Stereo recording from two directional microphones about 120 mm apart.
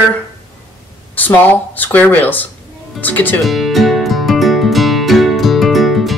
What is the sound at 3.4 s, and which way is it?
Music, centre (ahead or behind).